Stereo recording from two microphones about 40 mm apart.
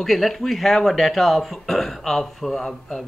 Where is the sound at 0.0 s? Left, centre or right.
Centre.